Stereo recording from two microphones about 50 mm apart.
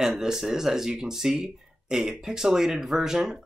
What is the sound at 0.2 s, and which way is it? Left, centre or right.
Speech, centre.